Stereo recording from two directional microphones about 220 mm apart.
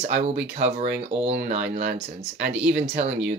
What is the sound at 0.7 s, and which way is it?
Speech, 35° right (ahead or behind).